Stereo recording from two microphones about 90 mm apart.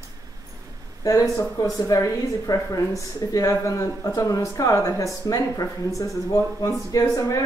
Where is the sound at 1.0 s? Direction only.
40° left (ahead or behind).